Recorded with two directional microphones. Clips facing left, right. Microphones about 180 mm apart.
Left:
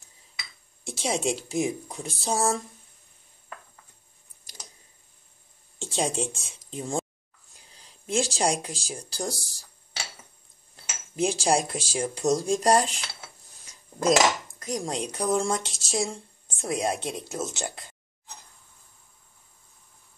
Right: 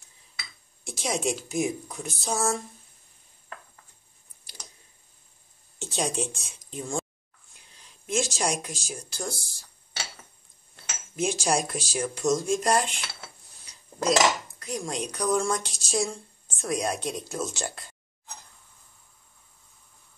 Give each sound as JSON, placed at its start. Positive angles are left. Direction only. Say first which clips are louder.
{"t": 0.8, "sound": "speech", "louder": "left 1 dB", "side_deg": 30}
{"t": 5.8, "sound": "speech", "louder": "left 1 dB", "side_deg": 30}
{"t": 11.1, "sound": "speech", "louder": "left 2 dB", "side_deg": 35}
{"t": 13.7, "sound": "dishes", "louder": "left 3 dB", "side_deg": 45}
{"t": 15.9, "sound": "speech", "louder": "right 1 dB", "side_deg": 20}